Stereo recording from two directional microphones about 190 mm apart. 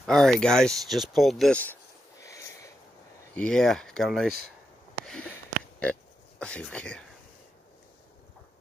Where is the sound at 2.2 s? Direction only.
15° left (ahead or behind).